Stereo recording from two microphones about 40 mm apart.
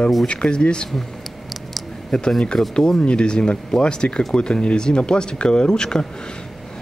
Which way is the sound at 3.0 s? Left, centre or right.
Left.